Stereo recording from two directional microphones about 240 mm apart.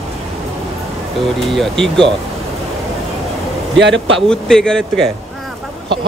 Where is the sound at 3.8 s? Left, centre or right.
Right.